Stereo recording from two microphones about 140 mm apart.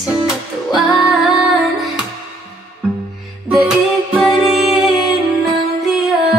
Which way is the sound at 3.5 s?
Centre (ahead or behind).